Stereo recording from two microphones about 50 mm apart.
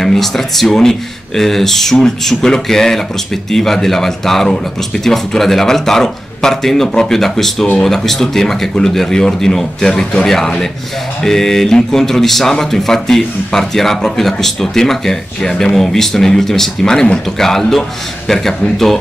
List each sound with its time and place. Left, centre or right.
0.0 s speech: centre